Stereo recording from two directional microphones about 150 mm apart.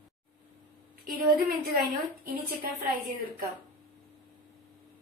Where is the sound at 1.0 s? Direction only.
70° right (ahead or behind).